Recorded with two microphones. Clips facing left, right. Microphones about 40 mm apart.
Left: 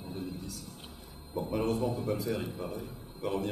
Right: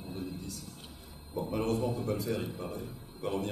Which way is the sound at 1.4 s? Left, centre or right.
Centre.